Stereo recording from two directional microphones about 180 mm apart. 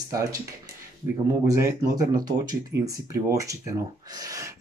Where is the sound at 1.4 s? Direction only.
15° right (ahead or behind).